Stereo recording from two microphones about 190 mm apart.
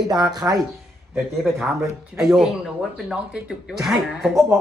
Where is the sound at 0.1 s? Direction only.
20° right (ahead or behind).